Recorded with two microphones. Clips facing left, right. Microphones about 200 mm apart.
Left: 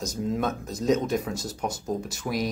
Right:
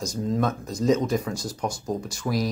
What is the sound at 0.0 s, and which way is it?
Speech, centre (ahead or behind).